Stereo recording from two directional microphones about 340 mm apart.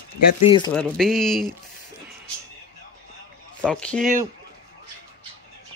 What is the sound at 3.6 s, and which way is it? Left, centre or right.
Speech, centre.